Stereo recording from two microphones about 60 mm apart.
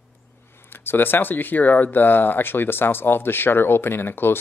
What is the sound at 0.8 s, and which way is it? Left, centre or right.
Speech, left.